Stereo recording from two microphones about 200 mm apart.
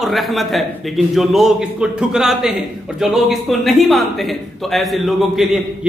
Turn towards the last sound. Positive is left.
turn(degrees=0)  # may be behind; listen again after turning